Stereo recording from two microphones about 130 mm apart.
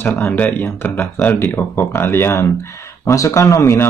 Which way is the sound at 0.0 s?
15° left (ahead or behind).